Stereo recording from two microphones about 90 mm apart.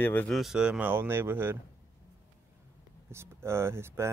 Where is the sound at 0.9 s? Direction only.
25° right (ahead or behind).